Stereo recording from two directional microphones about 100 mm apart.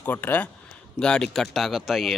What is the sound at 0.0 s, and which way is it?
A man's voice, 15° left (ahead or behind).